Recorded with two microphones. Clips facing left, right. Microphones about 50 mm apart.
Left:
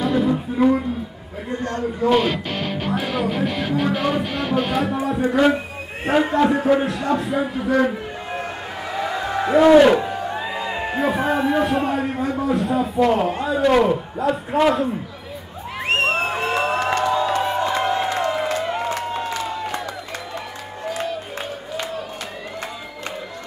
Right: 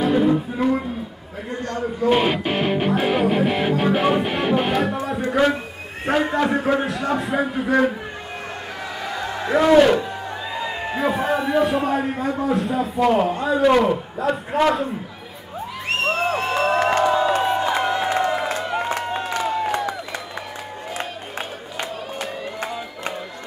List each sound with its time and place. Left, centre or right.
0.0 s music: centre
0.6 s a man's voice: centre
2.0 s music: right
4.9 s speech: centre
6.0 s a man's voice: centre
9.5 s a man's voice: centre
15.9 s crowd: left
16.5 s music: centre
16.8 s music: centre
18.0 s applause: centre
18.7 s a sound: right